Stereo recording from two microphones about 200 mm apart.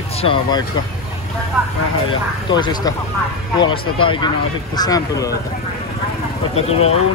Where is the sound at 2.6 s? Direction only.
20° left (ahead or behind).